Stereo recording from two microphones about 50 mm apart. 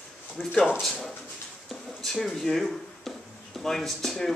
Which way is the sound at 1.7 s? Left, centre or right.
Centre.